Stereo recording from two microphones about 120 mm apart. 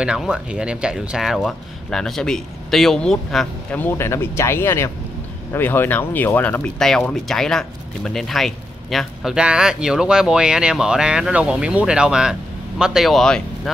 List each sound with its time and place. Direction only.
0.0 s speech: 5° right (ahead or behind)
3.7 s speech: 20° left (ahead or behind); by 13.4 s centre (ahead or behind)